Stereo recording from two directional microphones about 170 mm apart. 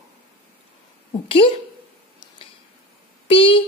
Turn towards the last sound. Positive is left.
turn(degrees=30)  # may be behind; listen again after turning